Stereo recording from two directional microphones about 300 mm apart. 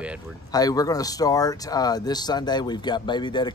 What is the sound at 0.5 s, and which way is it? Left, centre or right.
Speech, centre.